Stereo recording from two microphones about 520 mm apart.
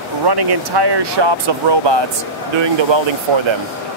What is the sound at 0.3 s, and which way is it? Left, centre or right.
Speech, right.